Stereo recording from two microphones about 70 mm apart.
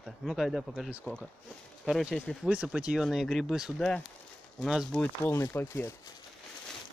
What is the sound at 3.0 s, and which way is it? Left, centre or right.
Speech, centre.